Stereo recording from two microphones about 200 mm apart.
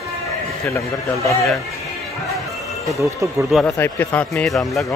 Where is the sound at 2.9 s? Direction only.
15° right (ahead or behind).